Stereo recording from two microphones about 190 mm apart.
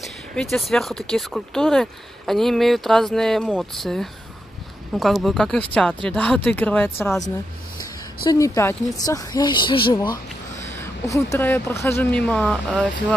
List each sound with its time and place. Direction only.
0.0 s a woman's voice: centre (ahead or behind)